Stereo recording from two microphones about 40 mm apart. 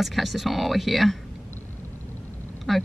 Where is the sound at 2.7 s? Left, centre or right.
Centre.